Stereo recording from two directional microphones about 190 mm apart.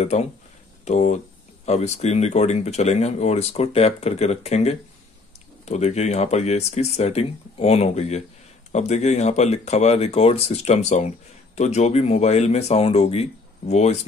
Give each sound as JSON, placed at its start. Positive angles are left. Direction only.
{"t": 0.0, "sound": "speech", "side_deg": 35}